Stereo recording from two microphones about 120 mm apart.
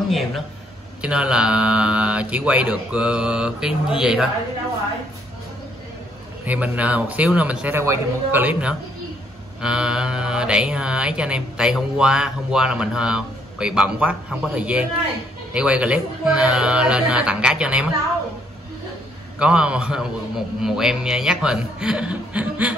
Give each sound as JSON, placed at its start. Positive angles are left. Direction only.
{"t": 1.0, "sound": "mantra", "side_deg": -5}
{"t": 6.4, "sound": "mantra", "side_deg": -15}
{"t": 19.3, "sound": "mantra", "side_deg": -10}